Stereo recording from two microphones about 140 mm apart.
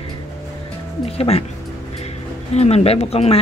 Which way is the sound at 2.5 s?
50° left (ahead or behind).